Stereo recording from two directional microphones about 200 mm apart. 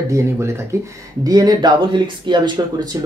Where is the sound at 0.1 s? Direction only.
15° right (ahead or behind).